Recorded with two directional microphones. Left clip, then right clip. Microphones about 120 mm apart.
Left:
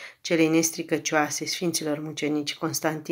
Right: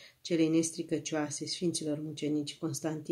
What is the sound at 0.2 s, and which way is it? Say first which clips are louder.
Speech: left 7 dB; 30° right (ahead or behind).